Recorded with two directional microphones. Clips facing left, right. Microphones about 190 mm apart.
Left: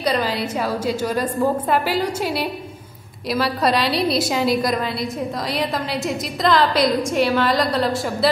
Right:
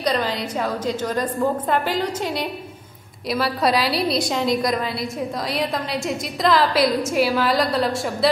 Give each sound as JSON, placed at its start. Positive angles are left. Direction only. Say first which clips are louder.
{"t": 0.0, "sound": "a woman's voice", "louder": "left 1 dB", "side_deg": 5}